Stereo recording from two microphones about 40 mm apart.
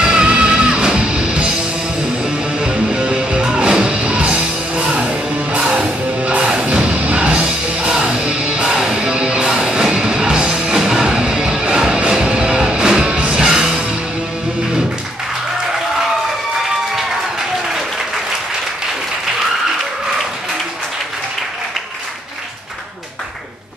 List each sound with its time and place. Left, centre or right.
0.0 s music: centre
2.6 s music: centre
6.9 s music: right
7.2 s music: right